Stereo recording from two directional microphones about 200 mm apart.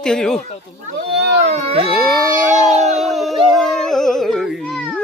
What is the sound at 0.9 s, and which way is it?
Speech, 55° right (ahead or behind).